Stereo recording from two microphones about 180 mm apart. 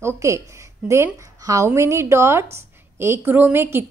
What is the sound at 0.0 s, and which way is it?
A woman's voice, 15° right (ahead or behind).